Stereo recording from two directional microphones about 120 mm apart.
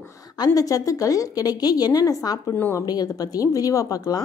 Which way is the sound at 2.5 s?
15° left (ahead or behind).